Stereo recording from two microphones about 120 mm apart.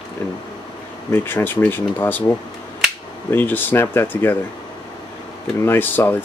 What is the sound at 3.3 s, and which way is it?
Speech, 15° left (ahead or behind).